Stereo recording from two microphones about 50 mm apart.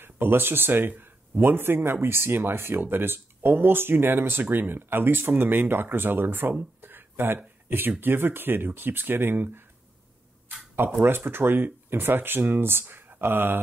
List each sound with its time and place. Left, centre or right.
0.0 s speech: right
6.8 s a sound: right
7.3 s speech: right
10.8 s speech: right